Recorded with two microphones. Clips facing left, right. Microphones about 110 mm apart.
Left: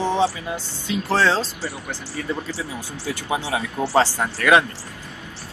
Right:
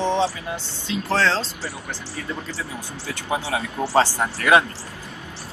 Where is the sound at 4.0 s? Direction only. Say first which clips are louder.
Left 1 dB; 20° right (ahead or behind).